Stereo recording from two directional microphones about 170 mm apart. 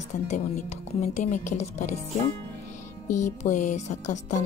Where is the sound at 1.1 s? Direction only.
50° left (ahead or behind).